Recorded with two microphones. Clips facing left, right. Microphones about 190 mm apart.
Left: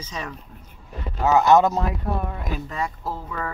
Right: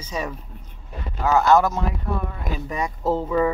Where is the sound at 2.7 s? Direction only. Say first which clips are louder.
Right 6 dB; 20° right (ahead or behind).